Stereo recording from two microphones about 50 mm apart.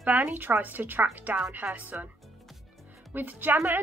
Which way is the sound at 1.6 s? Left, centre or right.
Centre.